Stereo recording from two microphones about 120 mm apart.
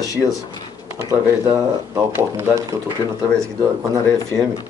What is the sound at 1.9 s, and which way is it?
Speech, 20° right (ahead or behind).